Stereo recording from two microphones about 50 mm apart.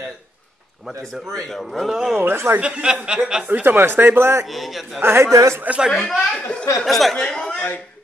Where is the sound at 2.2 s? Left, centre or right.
Right.